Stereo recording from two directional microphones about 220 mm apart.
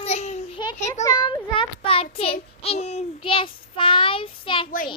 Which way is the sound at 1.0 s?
20° left (ahead or behind).